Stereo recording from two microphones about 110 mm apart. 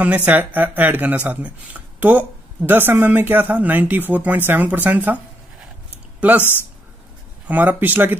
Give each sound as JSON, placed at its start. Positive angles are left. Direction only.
{"t": 0.0, "sound": "speech", "side_deg": -15}
{"t": 6.2, "sound": "speech", "side_deg": -15}
{"t": 7.4, "sound": "speech", "side_deg": -15}